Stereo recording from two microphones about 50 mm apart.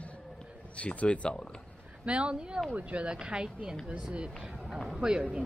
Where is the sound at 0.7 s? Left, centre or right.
Left.